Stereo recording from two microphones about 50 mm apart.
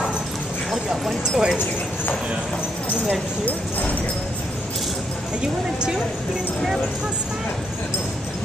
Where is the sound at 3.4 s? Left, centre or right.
Left.